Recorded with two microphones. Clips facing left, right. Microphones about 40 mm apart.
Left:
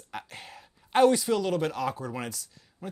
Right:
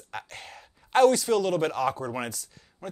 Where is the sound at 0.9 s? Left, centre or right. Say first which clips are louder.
Right 2 dB; centre.